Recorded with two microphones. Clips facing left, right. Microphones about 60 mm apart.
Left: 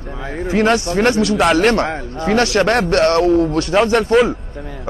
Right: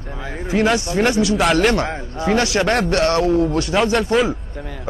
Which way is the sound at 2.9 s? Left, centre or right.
Left.